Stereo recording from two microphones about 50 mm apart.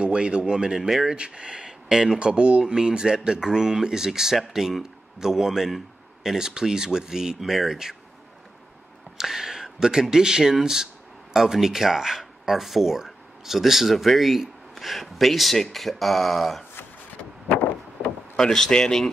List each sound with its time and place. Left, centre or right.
0.0 s speech: centre
1.1 s speech: centre
9.2 s speech: centre
18.3 s speech: centre